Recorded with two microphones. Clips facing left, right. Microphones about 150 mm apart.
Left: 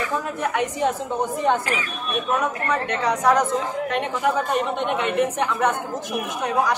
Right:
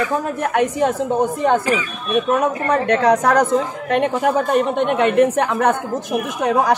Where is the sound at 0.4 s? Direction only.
50° right (ahead or behind).